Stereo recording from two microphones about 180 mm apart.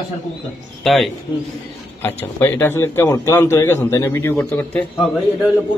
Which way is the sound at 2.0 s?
10° left (ahead or behind).